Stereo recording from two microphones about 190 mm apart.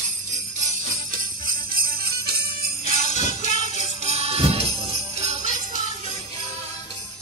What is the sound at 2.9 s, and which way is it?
Jingle bell, 40° left (ahead or behind).